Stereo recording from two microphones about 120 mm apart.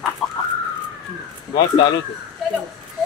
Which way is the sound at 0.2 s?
5° left (ahead or behind).